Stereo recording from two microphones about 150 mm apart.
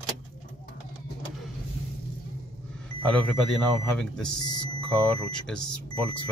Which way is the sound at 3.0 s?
5° left (ahead or behind).